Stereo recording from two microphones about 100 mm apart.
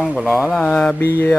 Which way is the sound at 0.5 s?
10° left (ahead or behind).